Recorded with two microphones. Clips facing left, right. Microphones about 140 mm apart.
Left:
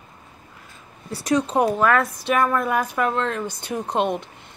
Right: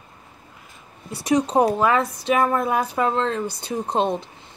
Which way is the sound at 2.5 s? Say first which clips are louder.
Even; 35° right (ahead or behind).